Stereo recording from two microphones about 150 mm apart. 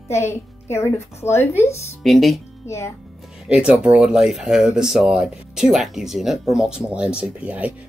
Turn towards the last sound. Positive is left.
turn(degrees=-10)  # may be behind; listen again after turning